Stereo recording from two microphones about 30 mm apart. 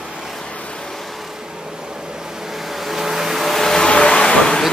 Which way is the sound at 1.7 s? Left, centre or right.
Right.